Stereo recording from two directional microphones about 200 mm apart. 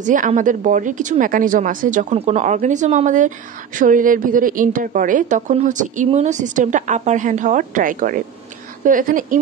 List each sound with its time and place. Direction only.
0.0 s a woman's voice: 40° right (ahead or behind)